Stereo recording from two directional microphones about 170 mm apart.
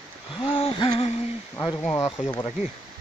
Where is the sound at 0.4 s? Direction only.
35° left (ahead or behind).